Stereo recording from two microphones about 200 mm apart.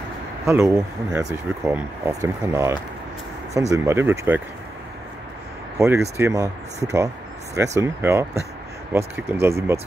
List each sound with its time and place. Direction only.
0.5 s speech: 15° right (ahead or behind)
3.7 s speech: 15° right (ahead or behind)
5.8 s speech: 15° right (ahead or behind)